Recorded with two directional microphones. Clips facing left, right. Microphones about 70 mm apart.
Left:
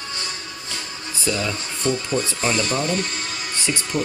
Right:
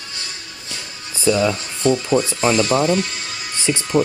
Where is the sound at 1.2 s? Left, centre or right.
Right.